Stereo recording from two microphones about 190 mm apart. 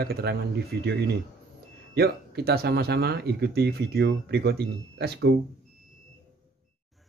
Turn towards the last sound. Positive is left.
turn(degrees=-65)  # may be behind; listen again after turning